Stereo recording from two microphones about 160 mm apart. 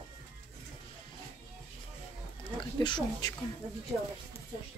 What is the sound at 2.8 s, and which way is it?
Speech, 30° left (ahead or behind).